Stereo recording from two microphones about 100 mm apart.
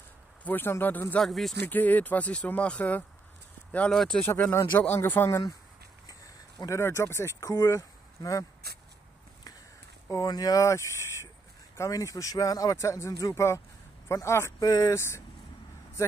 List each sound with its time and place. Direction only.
0.4 s speech: 20° left (ahead or behind)
1.2 s speech: centre (ahead or behind)
1.7 s speech: 15° left (ahead or behind)
3.9 s speech: 5° left (ahead or behind)
4.2 s speech: 25° left (ahead or behind)
6.0 s a sound: 40° left (ahead or behind)
6.8 s speech: 25° left (ahead or behind)
10.0 s speech: 40° left (ahead or behind)